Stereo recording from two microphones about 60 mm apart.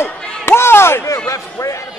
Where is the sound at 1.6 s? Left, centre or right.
Left.